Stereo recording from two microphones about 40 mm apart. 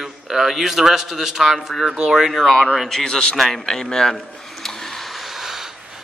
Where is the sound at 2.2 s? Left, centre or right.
Centre.